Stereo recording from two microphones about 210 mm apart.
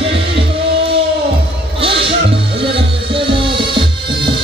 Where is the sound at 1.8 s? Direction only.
25° right (ahead or behind).